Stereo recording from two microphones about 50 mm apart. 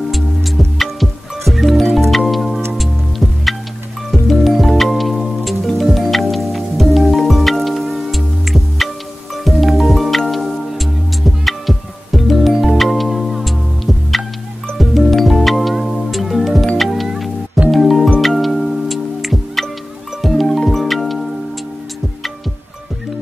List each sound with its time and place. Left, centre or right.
0.7 s music: centre
4.1 s music: centre
14.8 s music: centre